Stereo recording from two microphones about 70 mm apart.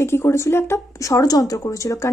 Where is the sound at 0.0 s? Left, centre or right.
Left.